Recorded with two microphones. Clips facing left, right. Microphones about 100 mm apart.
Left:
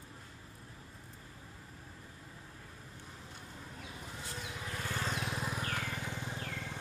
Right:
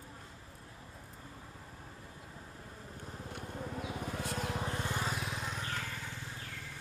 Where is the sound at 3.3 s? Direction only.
60° right (ahead or behind).